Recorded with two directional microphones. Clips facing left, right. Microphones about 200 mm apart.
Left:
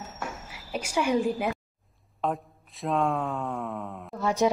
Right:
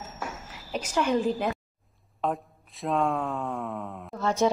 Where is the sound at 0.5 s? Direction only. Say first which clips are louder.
Even; 10° left (ahead or behind).